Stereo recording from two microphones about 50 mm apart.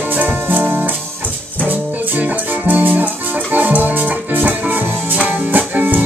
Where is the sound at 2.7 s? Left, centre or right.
Right.